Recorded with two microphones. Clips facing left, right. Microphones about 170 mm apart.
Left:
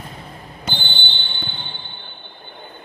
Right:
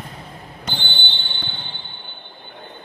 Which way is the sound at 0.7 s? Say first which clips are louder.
Left 1 dB; 5° left (ahead or behind).